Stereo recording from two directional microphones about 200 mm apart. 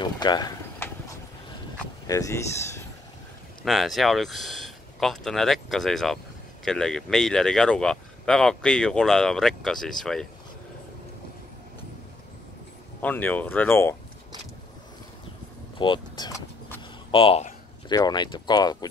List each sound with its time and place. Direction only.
0.0 s a sound: 20° left (ahead or behind)
2.0 s speech: 15° left (ahead or behind)
3.6 s speech: centre (ahead or behind)
13.0 s speech: 10° left (ahead or behind)
15.8 s vehicle: 20° left (ahead or behind)
17.1 s speech: 25° left (ahead or behind)